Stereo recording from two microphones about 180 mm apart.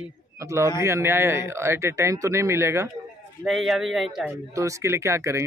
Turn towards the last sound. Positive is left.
turn(degrees=-15)  # may be behind; listen again after turning